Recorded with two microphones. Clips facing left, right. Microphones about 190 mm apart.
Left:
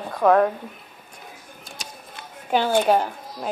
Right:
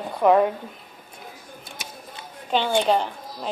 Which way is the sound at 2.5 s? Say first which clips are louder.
Left 2 dB; 5° left (ahead or behind).